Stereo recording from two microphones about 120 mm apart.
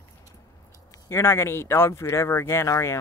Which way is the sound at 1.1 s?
20° left (ahead or behind).